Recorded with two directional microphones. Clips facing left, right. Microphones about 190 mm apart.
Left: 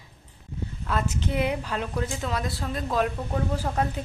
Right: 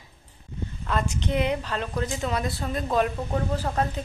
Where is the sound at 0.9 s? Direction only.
5° left (ahead or behind).